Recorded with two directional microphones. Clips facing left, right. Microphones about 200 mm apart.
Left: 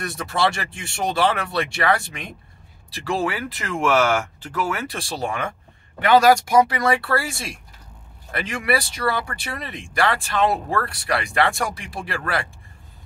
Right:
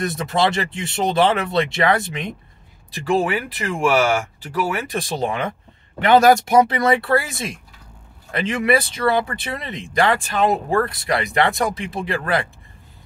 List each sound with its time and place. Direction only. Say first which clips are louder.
0.0 s speech: right 3 dB; 20° right (ahead or behind)